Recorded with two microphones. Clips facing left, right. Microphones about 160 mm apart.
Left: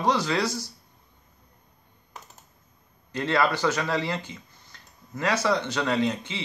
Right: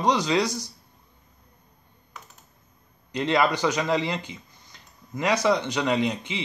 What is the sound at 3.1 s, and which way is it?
Speech, 20° right (ahead or behind).